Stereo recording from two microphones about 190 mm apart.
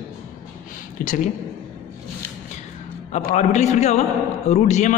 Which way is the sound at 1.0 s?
45° left (ahead or behind).